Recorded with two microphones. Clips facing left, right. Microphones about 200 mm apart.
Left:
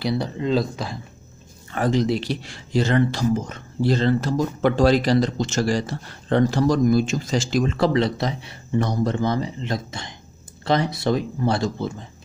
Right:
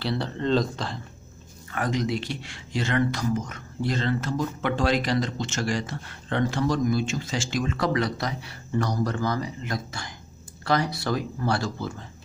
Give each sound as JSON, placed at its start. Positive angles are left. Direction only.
{"t": 0.0, "sound": "speech", "side_deg": 10}
{"t": 1.7, "sound": "speech", "side_deg": 30}